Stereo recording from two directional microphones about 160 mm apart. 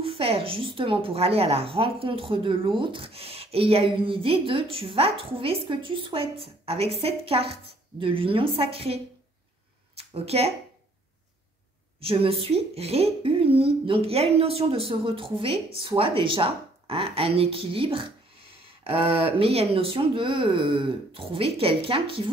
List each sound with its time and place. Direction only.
0.0 s speech: 35° right (ahead or behind)
12.0 s speech: 35° right (ahead or behind)